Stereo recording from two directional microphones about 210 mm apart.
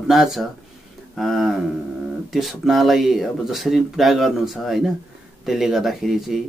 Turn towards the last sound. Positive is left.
turn(degrees=0)  # may be behind; listen again after turning